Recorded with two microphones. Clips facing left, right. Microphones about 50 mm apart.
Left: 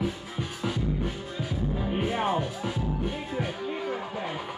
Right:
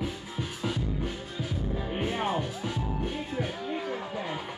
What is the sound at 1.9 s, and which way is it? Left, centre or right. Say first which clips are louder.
Music: left 2 dB; centre.